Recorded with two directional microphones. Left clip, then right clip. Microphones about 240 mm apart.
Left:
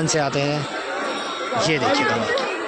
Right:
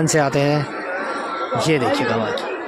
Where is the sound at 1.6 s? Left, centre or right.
Centre.